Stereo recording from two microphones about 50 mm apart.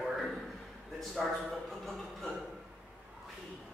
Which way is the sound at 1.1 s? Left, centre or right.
Centre.